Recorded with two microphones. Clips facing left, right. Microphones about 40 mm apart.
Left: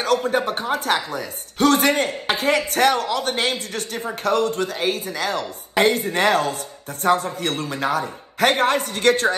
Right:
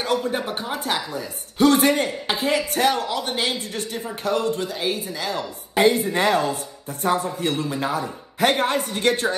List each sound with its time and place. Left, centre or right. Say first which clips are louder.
0.4 s speech: left 4 dB; centre
1.1 s a woman's voice: left 1 dB; left